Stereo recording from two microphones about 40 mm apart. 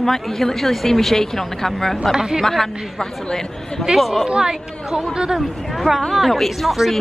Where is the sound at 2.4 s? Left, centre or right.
Centre.